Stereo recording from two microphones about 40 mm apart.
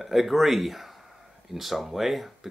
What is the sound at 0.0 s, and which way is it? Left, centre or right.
Speech, centre.